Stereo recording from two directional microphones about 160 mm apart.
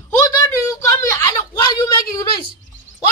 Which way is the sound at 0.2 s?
20° left (ahead or behind).